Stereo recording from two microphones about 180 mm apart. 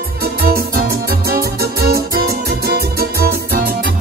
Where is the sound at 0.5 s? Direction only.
60° right (ahead or behind).